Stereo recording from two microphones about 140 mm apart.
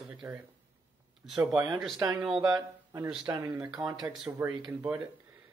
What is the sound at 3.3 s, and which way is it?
Speech, 20° right (ahead or behind).